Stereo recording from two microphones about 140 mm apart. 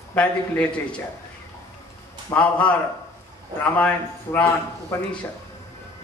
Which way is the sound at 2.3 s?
10° left (ahead or behind).